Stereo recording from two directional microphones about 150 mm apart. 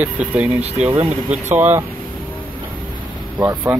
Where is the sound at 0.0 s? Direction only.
10° right (ahead or behind).